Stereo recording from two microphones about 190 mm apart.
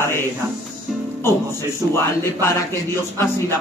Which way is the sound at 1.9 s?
10° left (ahead or behind).